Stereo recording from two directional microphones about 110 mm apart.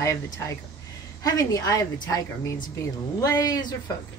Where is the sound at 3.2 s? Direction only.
35° left (ahead or behind).